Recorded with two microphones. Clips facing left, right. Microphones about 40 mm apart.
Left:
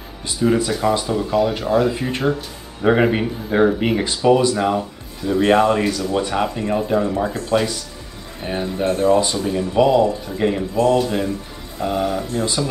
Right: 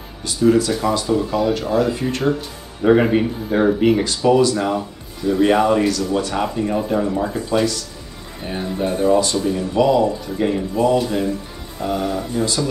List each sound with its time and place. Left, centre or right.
0.3 s speech: centre
8.4 s speech: centre
8.8 s speech: centre
9.2 s speech: centre
10.8 s speech: centre
11.8 s speech: centre